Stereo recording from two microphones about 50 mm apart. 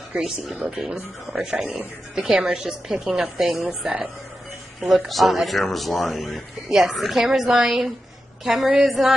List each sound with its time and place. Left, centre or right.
0.2 s speech: centre
4.7 s speech: centre